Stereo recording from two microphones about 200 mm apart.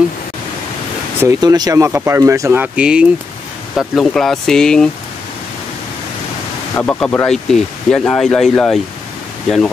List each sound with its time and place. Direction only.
1.2 s speech: 15° right (ahead or behind); by 4.8 s 5° left (ahead or behind)
6.7 s speech: 10° left (ahead or behind)